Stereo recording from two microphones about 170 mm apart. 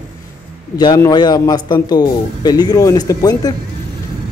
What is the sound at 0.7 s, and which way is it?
A man's voice, 25° left (ahead or behind).